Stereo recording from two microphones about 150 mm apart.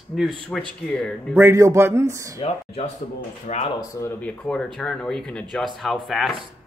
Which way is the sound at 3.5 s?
55° left (ahead or behind).